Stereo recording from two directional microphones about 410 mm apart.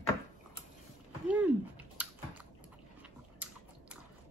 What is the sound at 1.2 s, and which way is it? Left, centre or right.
Speech, centre.